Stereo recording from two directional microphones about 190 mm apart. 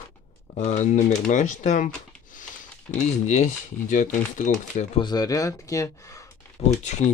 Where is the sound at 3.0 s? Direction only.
35° left (ahead or behind).